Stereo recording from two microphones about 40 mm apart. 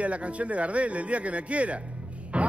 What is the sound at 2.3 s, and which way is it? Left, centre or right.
Music, right.